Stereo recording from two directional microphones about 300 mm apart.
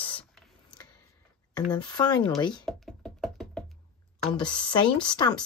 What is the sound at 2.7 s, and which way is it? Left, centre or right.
Music, centre.